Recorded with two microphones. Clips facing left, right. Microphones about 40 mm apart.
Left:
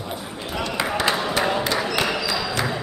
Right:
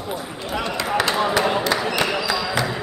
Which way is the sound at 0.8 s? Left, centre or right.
Centre.